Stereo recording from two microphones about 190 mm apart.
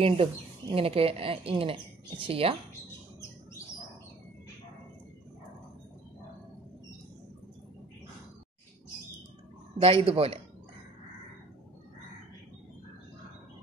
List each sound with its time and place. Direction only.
0.0 s speech: 30° right (ahead or behind)
9.8 s speech: 30° right (ahead or behind)